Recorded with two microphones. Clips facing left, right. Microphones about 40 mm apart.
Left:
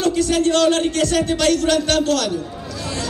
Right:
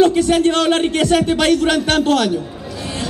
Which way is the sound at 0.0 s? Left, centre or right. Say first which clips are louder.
Right 5 dB; right.